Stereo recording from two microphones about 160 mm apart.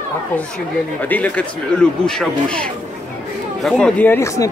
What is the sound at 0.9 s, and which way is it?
Speech, 10° left (ahead or behind).